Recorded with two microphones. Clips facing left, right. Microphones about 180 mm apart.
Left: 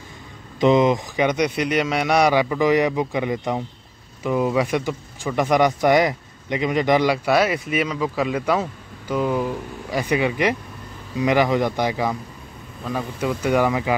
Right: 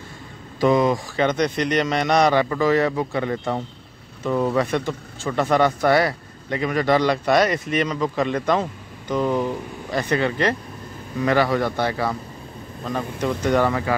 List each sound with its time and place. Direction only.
0.6 s speech: 20° left (ahead or behind)